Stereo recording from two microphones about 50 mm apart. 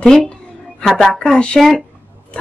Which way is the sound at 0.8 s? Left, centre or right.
Centre.